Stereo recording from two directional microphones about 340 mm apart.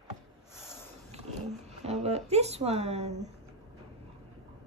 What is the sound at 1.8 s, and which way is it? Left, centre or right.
Speech, centre.